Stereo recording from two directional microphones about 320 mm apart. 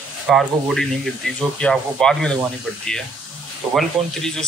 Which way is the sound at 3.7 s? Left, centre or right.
Centre.